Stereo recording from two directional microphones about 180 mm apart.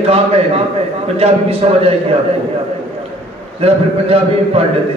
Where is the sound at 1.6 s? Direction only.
35° right (ahead or behind).